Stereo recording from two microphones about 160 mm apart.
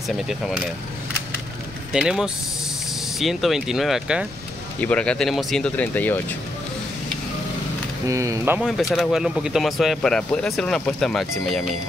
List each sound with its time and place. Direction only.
0.3 s speech: centre (ahead or behind)
1.9 s speech: 5° right (ahead or behind)
4.7 s speech: 10° left (ahead or behind)
8.1 s speech: 20° right (ahead or behind)
8.5 s speech: centre (ahead or behind)